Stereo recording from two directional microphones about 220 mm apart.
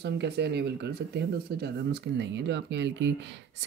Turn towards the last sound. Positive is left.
turn(degrees=-50)  # may be behind; listen again after turning